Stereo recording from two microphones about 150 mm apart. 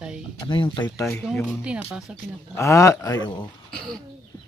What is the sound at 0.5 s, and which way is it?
Speech, 35° left (ahead or behind).